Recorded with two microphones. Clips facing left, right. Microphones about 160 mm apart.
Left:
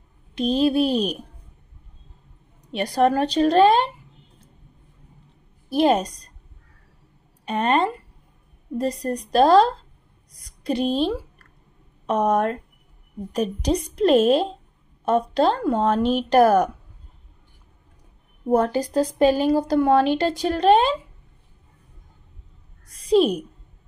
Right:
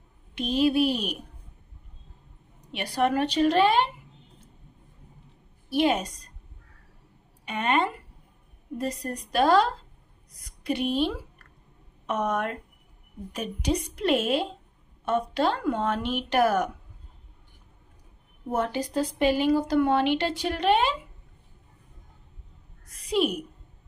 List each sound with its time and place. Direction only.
0.3 s speech: 35° left (ahead or behind)
2.7 s speech: 40° left (ahead or behind)
5.8 s speech: 40° left (ahead or behind)
7.4 s a woman's voice: 40° left (ahead or behind)
18.5 s speech: 35° left (ahead or behind)
22.9 s a sound: 35° left (ahead or behind)